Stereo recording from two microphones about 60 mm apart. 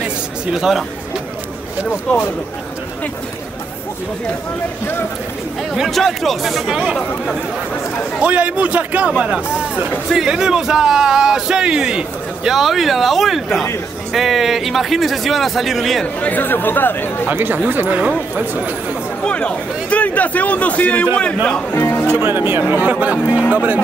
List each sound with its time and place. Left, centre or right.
0.0 s a sound: centre
5.6 s speech: centre
8.2 s a man's voice: right; by 16.0 s centre
16.2 s speech: left
17.3 s a man's voice: right
19.2 s a man's voice: left
21.7 s music: left
22.2 s a man's voice: right